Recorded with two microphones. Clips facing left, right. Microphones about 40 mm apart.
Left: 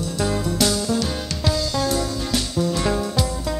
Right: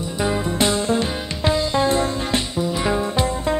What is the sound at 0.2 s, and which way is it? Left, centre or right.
Music, right.